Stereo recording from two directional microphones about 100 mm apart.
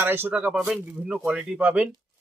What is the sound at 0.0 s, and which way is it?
Speech, 20° right (ahead or behind).